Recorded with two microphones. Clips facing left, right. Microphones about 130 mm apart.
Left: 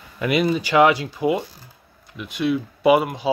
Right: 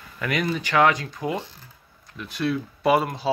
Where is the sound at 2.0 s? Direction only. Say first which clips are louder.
Left 3 dB; 20° left (ahead or behind).